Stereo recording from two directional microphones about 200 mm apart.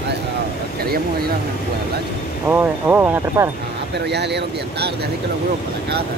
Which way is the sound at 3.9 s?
55° right (ahead or behind).